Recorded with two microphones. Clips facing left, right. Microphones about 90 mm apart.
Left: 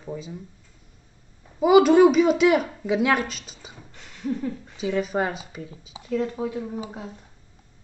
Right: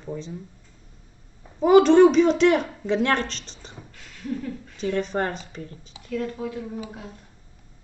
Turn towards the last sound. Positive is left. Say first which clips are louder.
# left 2 dB
turn(degrees=20)  # may be behind; listen again after turning